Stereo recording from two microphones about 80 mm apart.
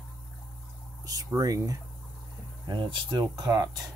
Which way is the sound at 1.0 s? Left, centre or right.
Right.